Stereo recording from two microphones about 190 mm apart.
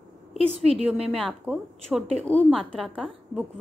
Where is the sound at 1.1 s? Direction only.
5° right (ahead or behind).